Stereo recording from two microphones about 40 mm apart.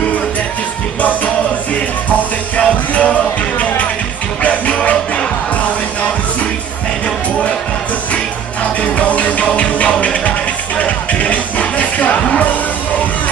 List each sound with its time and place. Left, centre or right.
2.6 s music: left
8.9 s music: left